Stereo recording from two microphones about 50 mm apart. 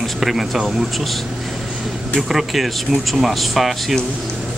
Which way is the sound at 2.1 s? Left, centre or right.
Centre.